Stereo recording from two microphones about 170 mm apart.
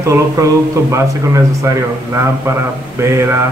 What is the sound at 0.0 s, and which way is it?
A man's voice, 20° right (ahead or behind).